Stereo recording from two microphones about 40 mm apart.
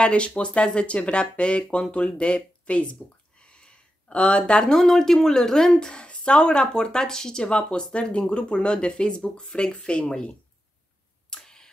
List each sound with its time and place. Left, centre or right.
0.0 s speech: left
4.7 s speech: centre; by 10.3 s left
11.2 s a sound: centre